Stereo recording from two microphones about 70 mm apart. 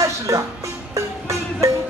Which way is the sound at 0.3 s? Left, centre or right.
Right.